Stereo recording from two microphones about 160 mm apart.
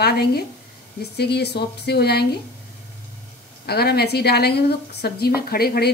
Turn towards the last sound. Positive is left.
turn(degrees=75)  # may be behind; listen again after turning